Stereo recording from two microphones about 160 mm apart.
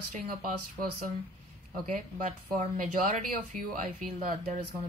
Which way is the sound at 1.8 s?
55° right (ahead or behind).